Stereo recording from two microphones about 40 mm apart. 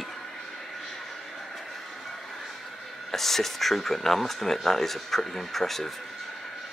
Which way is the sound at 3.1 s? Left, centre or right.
Centre.